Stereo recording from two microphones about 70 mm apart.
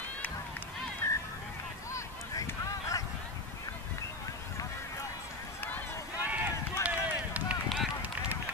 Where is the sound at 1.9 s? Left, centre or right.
Left.